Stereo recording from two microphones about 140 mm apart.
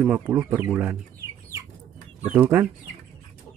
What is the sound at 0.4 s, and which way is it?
Speech, 25° right (ahead or behind).